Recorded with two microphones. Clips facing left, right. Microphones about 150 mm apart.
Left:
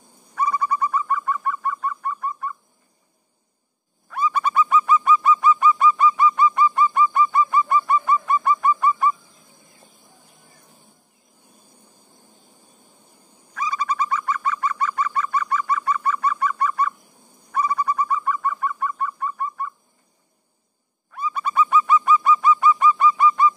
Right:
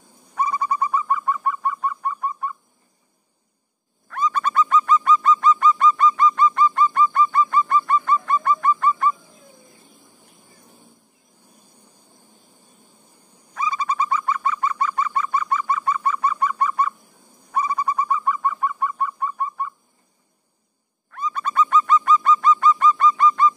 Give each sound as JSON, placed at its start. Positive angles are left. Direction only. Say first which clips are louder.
{"t": 0.3, "sound": "bird", "louder": "even", "side_deg": -25}
{"t": 4.1, "sound": "bird", "louder": "even", "side_deg": 10}
{"t": 13.6, "sound": "bird", "louder": "right 1 dB", "side_deg": -25}
{"t": 21.1, "sound": "bird", "louder": "left 1 dB", "side_deg": 10}